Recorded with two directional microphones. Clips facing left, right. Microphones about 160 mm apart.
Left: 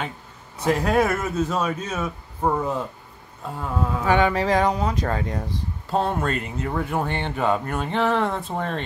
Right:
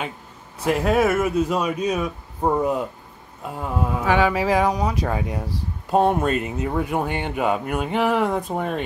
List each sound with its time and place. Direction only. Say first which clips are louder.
0.6 s speech: right 1 dB; 5° right (ahead or behind)